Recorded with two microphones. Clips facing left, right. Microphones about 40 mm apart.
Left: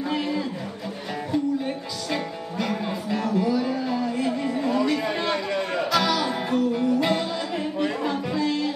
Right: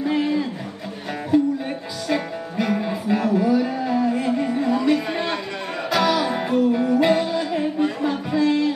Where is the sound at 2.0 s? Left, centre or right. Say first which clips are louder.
Right 5 dB; centre.